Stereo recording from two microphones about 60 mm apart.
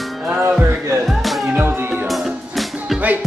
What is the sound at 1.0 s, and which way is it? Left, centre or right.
Music, centre.